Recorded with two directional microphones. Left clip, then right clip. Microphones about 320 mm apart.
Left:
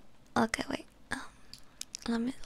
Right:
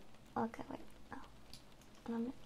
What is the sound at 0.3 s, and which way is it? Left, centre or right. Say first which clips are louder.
Whispering: left 11 dB; left.